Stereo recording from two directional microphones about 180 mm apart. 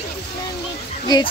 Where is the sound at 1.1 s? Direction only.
20° left (ahead or behind).